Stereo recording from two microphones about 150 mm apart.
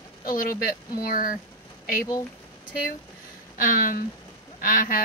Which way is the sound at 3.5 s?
65° left (ahead or behind).